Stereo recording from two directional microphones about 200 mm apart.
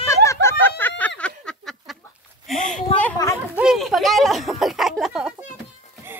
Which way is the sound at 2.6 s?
5° left (ahead or behind).